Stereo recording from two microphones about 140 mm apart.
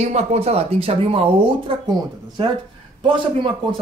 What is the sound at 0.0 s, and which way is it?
Speech, 50° right (ahead or behind).